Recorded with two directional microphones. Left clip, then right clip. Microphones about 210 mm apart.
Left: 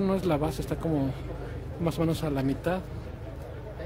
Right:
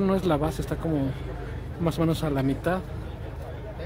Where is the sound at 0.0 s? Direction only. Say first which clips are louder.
Right 3 dB; centre (ahead or behind).